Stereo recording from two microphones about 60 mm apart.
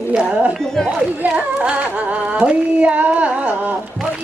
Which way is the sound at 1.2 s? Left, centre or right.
Centre.